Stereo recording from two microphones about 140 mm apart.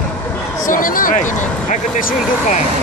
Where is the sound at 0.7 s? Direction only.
80° left.